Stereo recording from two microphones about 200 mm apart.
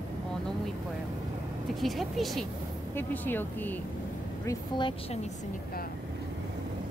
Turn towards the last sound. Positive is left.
turn(degrees=25)  # may be behind; listen again after turning